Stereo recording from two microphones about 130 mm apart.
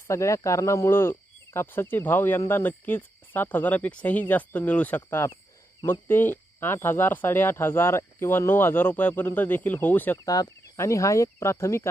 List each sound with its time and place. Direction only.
0.1 s speech: 25° left (ahead or behind)
10.1 s speech: 30° left (ahead or behind)